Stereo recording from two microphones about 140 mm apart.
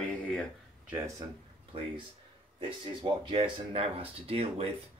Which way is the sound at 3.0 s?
35° right (ahead or behind).